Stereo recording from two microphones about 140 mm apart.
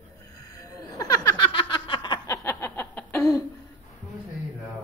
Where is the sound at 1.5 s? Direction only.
35° left (ahead or behind).